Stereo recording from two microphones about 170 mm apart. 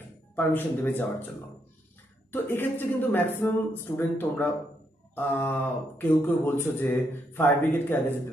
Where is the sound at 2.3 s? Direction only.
10° left (ahead or behind).